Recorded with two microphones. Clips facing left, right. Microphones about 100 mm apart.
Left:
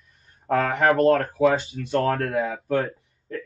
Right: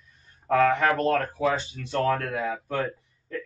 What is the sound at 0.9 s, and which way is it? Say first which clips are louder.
Speech: left 6 dB; 40° left (ahead or behind).